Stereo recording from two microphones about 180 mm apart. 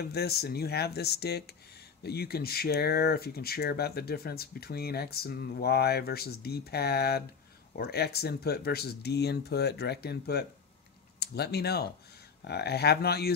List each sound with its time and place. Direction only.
0.0 s speech: 60° left (ahead or behind)